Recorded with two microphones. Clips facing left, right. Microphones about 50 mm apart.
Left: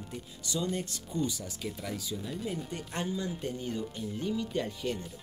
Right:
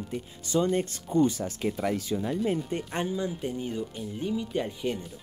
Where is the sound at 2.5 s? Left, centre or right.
Right.